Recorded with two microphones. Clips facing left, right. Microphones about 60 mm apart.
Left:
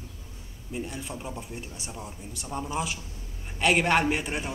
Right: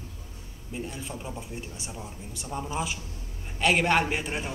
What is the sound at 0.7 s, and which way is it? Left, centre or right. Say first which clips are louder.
A woman's voice: left 1 dB; centre.